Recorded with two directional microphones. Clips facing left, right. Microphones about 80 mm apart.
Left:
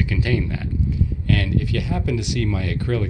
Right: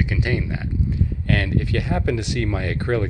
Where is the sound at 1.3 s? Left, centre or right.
Right.